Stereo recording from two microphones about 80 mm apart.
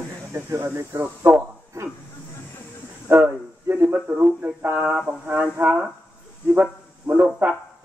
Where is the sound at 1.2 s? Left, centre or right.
Right.